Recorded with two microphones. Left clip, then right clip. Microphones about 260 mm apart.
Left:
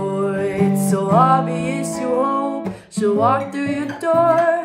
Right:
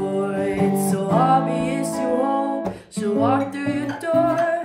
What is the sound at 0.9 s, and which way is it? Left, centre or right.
Music, centre.